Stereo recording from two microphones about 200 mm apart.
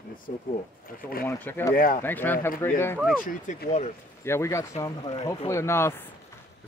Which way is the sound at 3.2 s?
40° left (ahead or behind).